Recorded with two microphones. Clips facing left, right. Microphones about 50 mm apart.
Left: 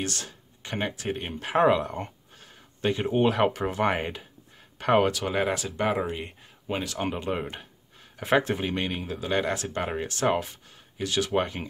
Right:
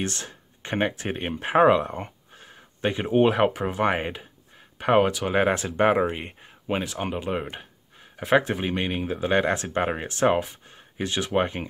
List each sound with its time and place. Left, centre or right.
0.0 s speech: right; by 5.4 s centre
5.4 s speech: right
7.0 s speech: centre; by 10.2 s right
10.2 s speech: centre
11.0 s speech: right